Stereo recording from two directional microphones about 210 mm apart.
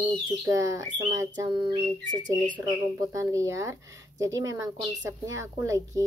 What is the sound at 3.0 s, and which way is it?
Bird, 15° right (ahead or behind).